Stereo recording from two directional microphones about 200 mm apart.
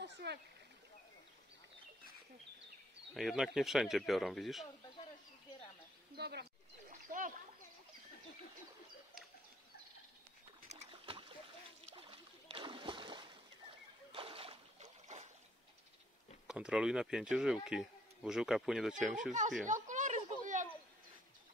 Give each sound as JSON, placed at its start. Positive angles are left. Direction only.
{"t": 0.0, "sound": "a sound", "side_deg": -55}
{"t": 3.2, "sound": "speech", "side_deg": 0}
{"t": 6.1, "sound": "speech", "side_deg": -55}
{"t": 6.9, "sound": "splash", "side_deg": -40}
{"t": 10.6, "sound": "boat", "side_deg": -35}
{"t": 11.9, "sound": "splash", "side_deg": -25}
{"t": 14.1, "sound": "a sound", "side_deg": -30}
{"t": 16.4, "sound": "speech", "side_deg": -5}
{"t": 19.6, "sound": "a sound", "side_deg": -40}